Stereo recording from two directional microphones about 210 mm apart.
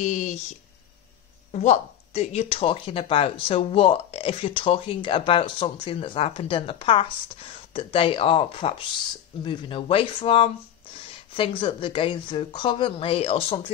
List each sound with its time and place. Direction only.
0.0 s speech: 35° left (ahead or behind)
1.5 s speech: 35° left (ahead or behind)